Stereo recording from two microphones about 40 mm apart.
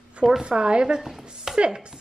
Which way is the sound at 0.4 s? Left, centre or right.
Right.